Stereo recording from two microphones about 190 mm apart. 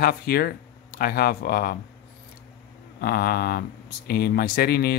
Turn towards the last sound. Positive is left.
turn(degrees=55)  # may be behind; listen again after turning